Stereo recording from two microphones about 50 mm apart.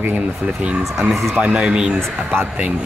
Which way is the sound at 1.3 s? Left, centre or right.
Right.